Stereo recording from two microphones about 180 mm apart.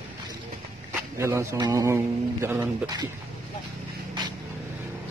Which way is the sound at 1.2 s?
15° right (ahead or behind).